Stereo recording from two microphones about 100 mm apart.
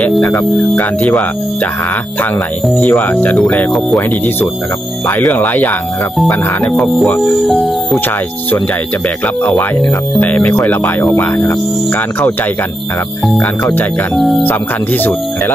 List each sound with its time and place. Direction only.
0.2 s speech: 35° left (ahead or behind)
0.5 s speech: centre (ahead or behind)
0.7 s speech: 15° left (ahead or behind)
2.7 s speech: 10° left (ahead or behind)
5.0 s speech: 15° left (ahead or behind)
6.6 s speech: centre (ahead or behind)
10.2 s speech: 15° left (ahead or behind)
14.1 s speech: centre (ahead or behind)
14.4 s speech: 20° left (ahead or behind)